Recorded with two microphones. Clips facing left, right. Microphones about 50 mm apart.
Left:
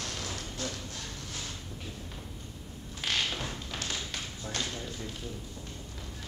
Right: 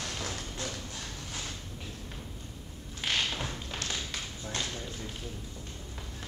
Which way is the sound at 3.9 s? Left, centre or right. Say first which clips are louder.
Even; centre.